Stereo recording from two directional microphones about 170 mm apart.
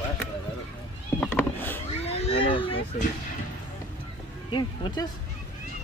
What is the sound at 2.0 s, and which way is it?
Speech, 35° left (ahead or behind).